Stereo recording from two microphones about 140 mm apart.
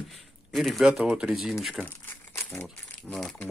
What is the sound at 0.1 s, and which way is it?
Speech, centre (ahead or behind).